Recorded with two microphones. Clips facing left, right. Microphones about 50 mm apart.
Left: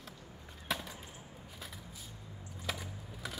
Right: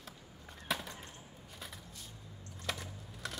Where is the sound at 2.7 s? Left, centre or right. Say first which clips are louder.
Even; centre.